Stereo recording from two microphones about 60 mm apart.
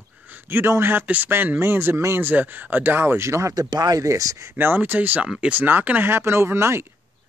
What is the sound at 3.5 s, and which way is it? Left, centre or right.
Speech, right.